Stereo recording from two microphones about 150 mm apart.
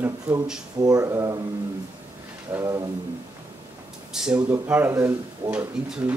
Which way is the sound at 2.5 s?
20° right (ahead or behind).